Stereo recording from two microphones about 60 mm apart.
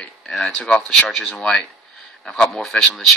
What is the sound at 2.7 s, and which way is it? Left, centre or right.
Speech, centre.